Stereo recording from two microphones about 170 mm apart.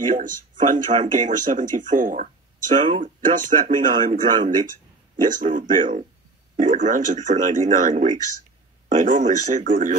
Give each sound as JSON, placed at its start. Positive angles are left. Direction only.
{"t": 0.0, "sound": "speech", "side_deg": -50}